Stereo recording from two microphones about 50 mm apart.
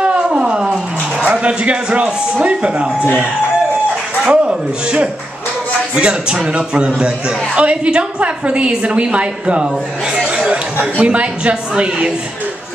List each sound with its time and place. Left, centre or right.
0.0 s a sound: centre
1.2 s a man's voice: right
4.3 s a woman's voice: right
10.1 s chatter: centre
10.8 s a woman's voice: right